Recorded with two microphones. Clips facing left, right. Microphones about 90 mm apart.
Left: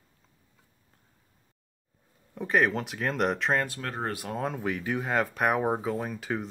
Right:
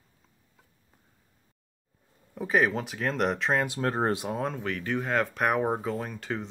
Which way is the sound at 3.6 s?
30° right (ahead or behind).